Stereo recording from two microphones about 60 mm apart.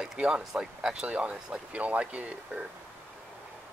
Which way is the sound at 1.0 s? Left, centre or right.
Right.